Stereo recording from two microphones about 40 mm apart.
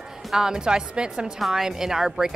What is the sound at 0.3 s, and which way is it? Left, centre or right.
Speech, centre.